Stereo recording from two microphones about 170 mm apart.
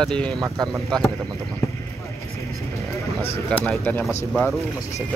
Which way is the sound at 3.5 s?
10° left (ahead or behind).